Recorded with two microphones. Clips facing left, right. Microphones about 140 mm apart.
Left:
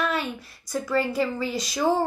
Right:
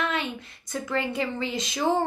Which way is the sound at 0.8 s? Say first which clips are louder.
Left 4 dB; 20° right (ahead or behind).